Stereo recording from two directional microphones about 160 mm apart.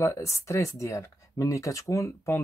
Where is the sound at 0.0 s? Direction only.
20° left (ahead or behind).